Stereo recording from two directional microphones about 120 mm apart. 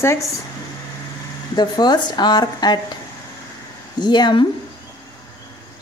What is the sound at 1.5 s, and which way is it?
A woman's voice, 35° left (ahead or behind).